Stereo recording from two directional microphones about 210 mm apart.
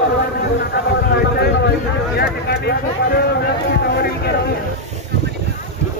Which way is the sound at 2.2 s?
50° left (ahead or behind).